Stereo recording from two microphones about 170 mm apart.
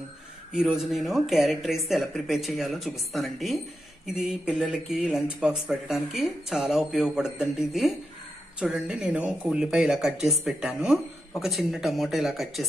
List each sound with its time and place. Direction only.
0.5 s speech: 5° right (ahead or behind)